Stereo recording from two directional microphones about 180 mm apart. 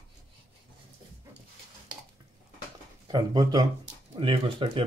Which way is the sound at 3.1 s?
20° right (ahead or behind).